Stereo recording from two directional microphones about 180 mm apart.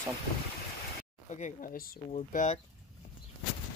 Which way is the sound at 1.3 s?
45° left (ahead or behind).